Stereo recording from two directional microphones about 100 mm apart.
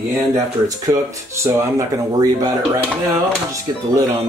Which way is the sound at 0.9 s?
30° right (ahead or behind).